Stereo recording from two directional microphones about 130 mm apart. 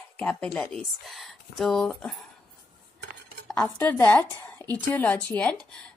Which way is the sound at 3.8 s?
15° left (ahead or behind).